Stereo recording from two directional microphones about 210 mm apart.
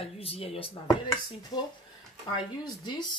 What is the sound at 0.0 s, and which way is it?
Speech, 25° left (ahead or behind).